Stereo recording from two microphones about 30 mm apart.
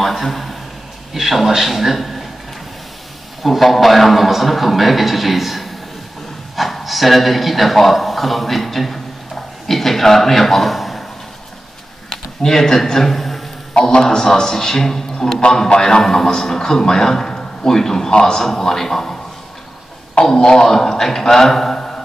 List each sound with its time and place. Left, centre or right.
0.0 s a man's voice: centre
3.4 s a man's voice: centre
12.4 s a man's voice: centre
13.8 s a man's voice: left
15.7 s a man's voice: left
16.0 s a man's voice: centre
20.3 s a man's voice: left
21.7 s music: left